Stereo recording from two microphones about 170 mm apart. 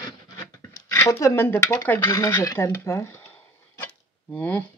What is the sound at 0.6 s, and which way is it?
Speech, 20° left (ahead or behind).